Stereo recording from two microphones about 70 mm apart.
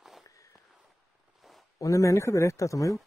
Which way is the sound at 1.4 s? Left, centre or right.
Centre.